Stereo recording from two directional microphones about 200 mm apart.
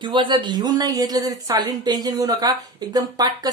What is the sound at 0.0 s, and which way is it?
A woman's voice, 25° right (ahead or behind).